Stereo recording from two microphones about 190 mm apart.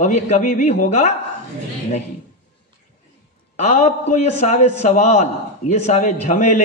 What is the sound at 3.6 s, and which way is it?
A man's voice, 35° left (ahead or behind).